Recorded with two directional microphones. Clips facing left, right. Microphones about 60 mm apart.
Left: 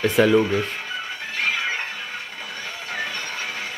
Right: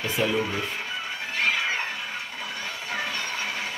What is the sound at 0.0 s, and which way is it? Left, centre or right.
Speech, left.